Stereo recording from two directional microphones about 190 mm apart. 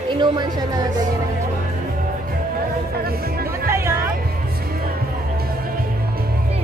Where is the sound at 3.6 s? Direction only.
15° right (ahead or behind).